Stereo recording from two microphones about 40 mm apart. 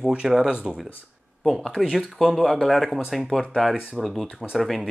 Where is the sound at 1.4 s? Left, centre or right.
Centre.